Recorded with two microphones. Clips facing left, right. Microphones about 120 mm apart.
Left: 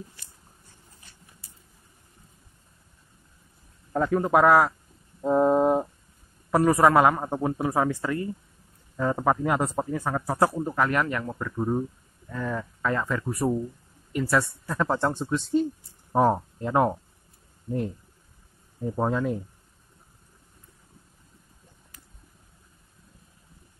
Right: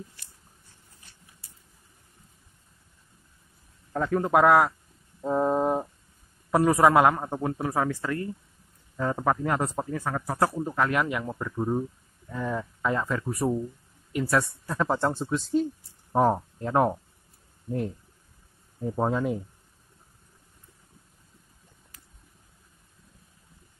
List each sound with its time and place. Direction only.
4.1 s speech: centre (ahead or behind)
5.2 s a sound: 15° left (ahead or behind)
6.5 s speech: centre (ahead or behind)
7.2 s speech: 15° left (ahead or behind)
10.5 s speech: 5° left (ahead or behind)
12.3 s speech: 15° right (ahead or behind)
18.9 s speech: 5° right (ahead or behind)